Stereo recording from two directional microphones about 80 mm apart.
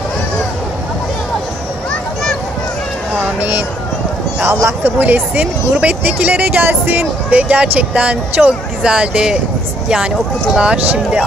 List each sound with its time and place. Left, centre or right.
3.3 s speech: right
4.5 s speech: right
4.9 s speech: right
10.5 s speech: centre